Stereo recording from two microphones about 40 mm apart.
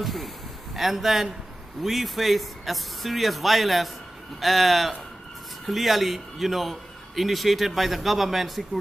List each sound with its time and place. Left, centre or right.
0.0 s a man's voice: centre